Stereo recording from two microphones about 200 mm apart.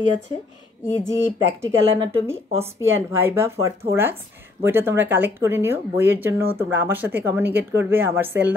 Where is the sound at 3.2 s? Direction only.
10° right (ahead or behind).